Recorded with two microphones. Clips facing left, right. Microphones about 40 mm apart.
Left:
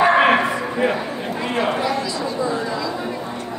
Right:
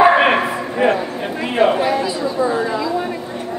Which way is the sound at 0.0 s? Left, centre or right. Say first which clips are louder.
Right 2 dB; centre.